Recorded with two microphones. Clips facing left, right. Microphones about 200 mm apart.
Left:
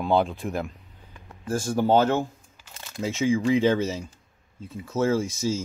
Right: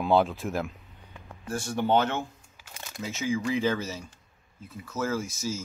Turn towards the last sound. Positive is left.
turn(degrees=30)  # may be behind; listen again after turning